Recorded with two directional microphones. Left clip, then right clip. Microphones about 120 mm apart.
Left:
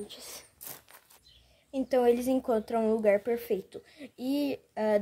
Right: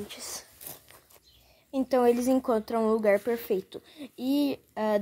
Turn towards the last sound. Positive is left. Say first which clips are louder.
# even
turn(degrees=-15)  # may be behind; listen again after turning